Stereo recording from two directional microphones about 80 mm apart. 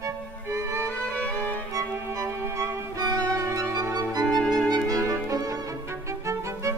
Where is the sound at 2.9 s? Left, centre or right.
Right.